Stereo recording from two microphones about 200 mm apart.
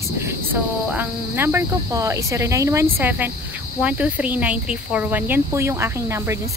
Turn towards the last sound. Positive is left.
turn(degrees=-15)  # may be behind; listen again after turning